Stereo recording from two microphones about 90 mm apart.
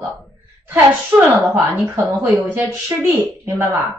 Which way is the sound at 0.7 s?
25° right (ahead or behind).